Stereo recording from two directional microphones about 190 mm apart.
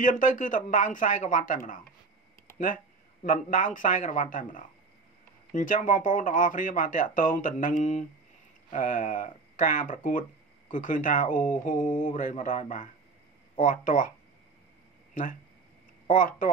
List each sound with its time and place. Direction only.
0.0 s speech: 45° left (ahead or behind)
3.3 s speech: 45° left (ahead or behind)
16.1 s speech: 45° left (ahead or behind)